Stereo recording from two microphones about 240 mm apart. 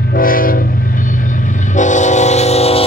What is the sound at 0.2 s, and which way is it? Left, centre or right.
Train, left.